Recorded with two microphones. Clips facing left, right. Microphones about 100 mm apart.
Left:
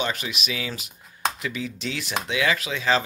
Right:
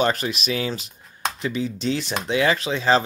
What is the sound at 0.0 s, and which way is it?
Speech, 40° right (ahead or behind).